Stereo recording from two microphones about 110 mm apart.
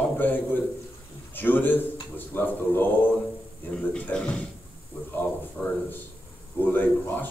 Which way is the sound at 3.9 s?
10° left (ahead or behind).